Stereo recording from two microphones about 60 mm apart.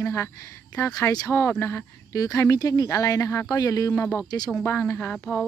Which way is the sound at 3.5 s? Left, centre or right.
Left.